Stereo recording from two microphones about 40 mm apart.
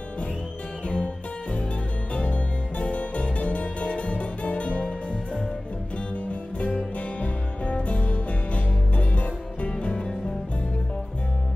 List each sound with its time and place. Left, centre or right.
0.8 s music: left
6.6 s music: left